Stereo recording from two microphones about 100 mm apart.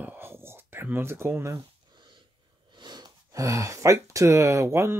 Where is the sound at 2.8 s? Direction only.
45° right (ahead or behind).